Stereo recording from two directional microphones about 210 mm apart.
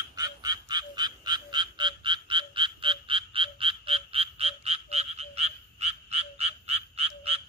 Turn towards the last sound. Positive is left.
turn(degrees=-30)  # may be behind; listen again after turning